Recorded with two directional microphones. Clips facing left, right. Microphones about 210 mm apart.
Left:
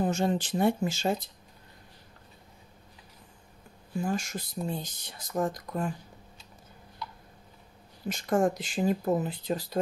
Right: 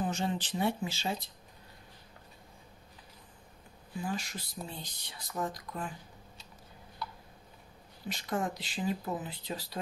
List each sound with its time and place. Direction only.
0.0 s speech: 45° left (ahead or behind)
3.9 s speech: 45° left (ahead or behind)
8.1 s speech: 50° left (ahead or behind)